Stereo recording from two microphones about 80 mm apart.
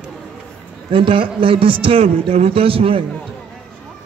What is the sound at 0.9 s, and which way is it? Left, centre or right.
Speech, right.